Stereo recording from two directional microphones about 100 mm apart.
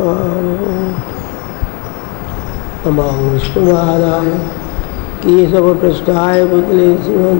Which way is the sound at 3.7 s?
25° left (ahead or behind).